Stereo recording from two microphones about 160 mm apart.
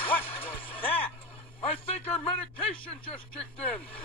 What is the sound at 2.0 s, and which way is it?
A man's voice, 40° left (ahead or behind).